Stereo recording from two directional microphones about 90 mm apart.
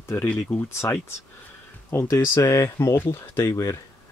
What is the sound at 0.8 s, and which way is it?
Speech, 35° left (ahead or behind).